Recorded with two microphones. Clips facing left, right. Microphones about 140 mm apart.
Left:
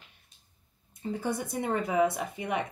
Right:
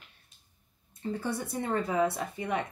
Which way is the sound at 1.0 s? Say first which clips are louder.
Left 1 dB; 15° left (ahead or behind).